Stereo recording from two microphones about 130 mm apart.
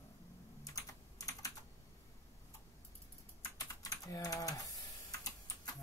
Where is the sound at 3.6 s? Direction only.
30° left (ahead or behind).